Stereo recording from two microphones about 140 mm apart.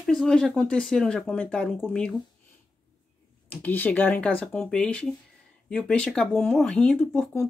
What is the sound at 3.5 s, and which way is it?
Speech, 15° left (ahead or behind).